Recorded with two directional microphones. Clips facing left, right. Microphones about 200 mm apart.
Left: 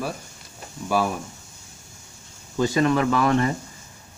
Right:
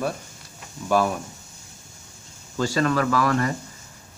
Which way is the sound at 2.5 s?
20° left (ahead or behind).